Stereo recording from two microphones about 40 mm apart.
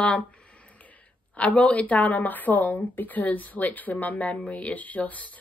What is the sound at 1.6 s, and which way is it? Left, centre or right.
Speech, left.